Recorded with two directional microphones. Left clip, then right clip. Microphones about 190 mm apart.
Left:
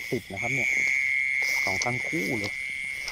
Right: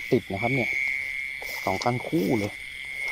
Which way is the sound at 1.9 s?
15° right (ahead or behind).